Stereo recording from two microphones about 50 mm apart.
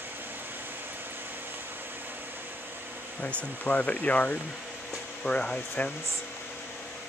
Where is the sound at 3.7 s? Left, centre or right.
Left.